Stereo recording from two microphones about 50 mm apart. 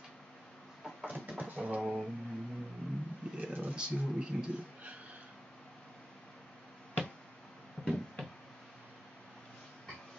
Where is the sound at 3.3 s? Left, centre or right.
Right.